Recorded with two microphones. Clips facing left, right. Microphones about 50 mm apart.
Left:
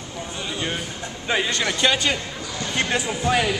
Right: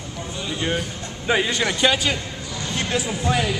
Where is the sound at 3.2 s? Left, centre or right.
Centre.